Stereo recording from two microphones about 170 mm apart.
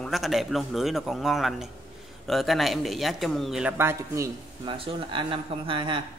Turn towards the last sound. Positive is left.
turn(degrees=-30)  # may be behind; listen again after turning